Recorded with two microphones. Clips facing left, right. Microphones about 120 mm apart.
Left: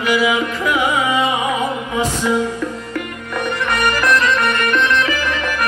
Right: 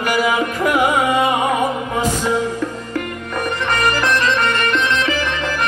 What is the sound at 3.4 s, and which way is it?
Music, 35° right (ahead or behind).